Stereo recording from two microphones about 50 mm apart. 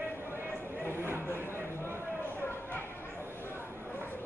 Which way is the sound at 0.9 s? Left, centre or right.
Right.